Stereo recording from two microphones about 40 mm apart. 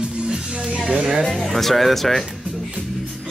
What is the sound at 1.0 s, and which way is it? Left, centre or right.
Speech, right.